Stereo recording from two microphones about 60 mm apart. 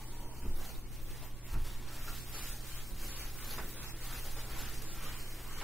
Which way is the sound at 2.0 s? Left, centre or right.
Centre.